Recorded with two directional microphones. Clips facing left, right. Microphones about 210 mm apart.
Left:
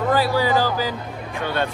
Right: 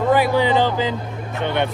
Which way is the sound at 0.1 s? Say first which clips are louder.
Right 3 dB; 20° right (ahead or behind).